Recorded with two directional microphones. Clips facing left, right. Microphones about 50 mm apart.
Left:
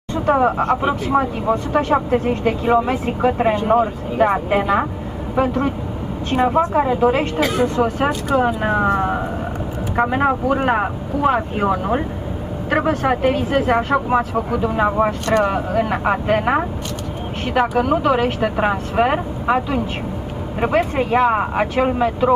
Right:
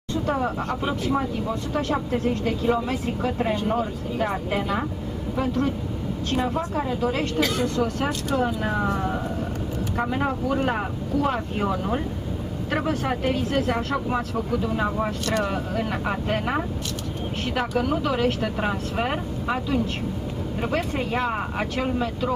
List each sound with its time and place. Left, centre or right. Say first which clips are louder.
0.1 s speech: left 8 dB; left
1.5 s speech: left 11 dB; left
6.3 s speech: left 10 dB; left
8.5 s speech: left 7 dB; left
15.0 s speech: left 8 dB; centre; by 22.3 s left